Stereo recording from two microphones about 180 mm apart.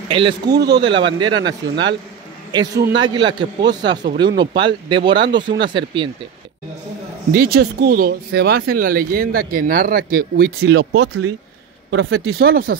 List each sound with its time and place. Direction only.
0.1 s speech: 30° right (ahead or behind)
7.3 s speech: 55° right (ahead or behind)